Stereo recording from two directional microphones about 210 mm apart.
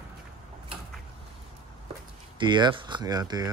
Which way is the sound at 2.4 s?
20° right (ahead or behind).